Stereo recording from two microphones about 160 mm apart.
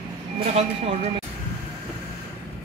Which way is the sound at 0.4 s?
45° right (ahead or behind).